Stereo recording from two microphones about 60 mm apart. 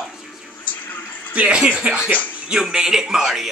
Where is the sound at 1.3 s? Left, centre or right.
Right.